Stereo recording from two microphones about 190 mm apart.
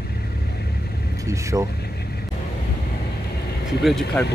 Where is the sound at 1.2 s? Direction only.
15° right (ahead or behind).